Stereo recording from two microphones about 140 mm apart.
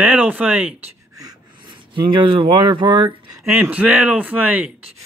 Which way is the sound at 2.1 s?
35° right (ahead or behind).